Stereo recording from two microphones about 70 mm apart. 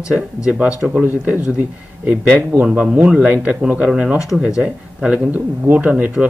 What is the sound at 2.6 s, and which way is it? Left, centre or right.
A man's voice, centre.